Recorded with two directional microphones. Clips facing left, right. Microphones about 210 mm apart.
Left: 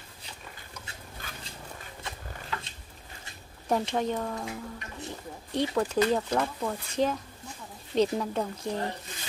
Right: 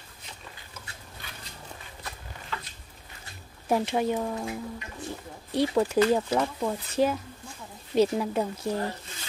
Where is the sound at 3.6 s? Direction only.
5° right (ahead or behind).